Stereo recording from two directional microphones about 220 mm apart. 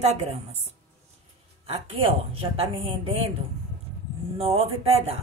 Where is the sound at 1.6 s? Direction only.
25° right (ahead or behind).